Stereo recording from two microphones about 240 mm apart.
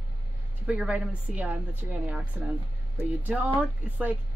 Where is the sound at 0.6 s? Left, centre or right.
Centre.